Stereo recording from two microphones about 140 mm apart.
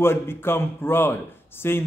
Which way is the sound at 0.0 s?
15° left (ahead or behind).